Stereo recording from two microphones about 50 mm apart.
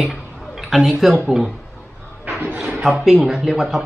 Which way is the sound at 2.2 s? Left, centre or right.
Right.